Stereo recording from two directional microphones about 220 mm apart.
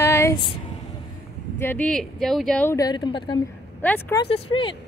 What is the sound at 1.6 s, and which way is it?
Speech, 5° left (ahead or behind).